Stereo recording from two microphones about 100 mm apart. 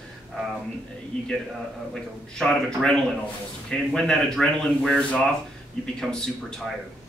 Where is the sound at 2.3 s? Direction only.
5° left (ahead or behind).